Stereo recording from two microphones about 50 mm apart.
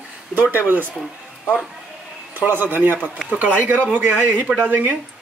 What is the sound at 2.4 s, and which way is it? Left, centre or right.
Speech, right.